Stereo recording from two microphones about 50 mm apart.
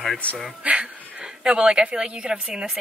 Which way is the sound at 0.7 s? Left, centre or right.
Right.